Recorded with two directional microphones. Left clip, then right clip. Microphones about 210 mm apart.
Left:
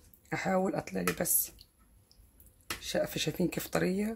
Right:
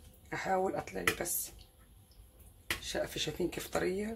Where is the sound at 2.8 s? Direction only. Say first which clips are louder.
Left 6 dB; 50° left (ahead or behind).